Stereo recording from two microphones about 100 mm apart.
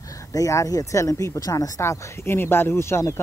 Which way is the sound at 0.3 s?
35° left (ahead or behind).